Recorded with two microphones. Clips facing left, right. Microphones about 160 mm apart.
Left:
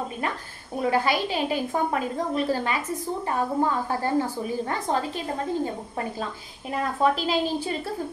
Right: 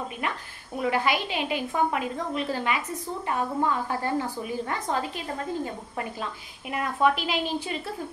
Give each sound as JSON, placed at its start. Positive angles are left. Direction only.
{"t": 0.7, "sound": "a woman's voice", "side_deg": 35}